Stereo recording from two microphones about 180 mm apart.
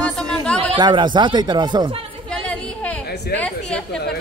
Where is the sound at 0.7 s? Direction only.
25° right (ahead or behind).